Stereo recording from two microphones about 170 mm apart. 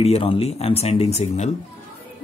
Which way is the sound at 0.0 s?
35° left (ahead or behind).